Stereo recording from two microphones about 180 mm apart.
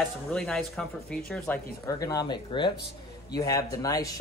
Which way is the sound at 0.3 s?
5° left (ahead or behind).